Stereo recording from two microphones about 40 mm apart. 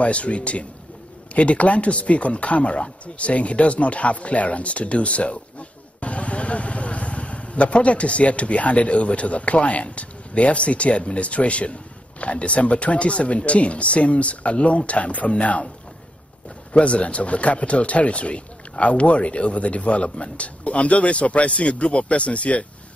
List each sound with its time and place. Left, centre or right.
0.0 s speech: left
16.7 s speech: left